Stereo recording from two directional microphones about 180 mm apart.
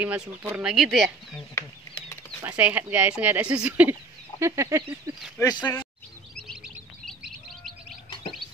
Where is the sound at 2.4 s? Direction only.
10° right (ahead or behind).